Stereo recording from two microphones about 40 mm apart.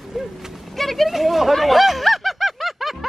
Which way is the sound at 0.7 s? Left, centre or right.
Centre.